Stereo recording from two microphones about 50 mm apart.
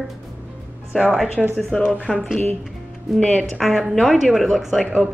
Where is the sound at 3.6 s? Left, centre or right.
Centre.